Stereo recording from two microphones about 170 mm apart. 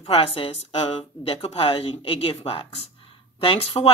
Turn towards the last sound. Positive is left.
turn(degrees=35)  # may be behind; listen again after turning